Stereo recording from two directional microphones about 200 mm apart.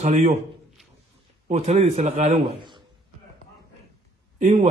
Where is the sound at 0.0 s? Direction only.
35° right (ahead or behind).